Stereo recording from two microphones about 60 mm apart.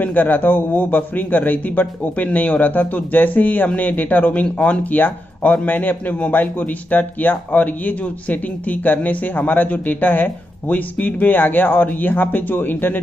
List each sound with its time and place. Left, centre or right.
0.0 s a man's voice: left